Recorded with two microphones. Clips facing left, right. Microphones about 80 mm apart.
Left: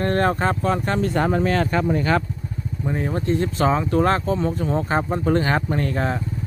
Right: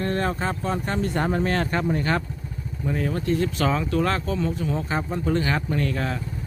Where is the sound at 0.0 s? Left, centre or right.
Left.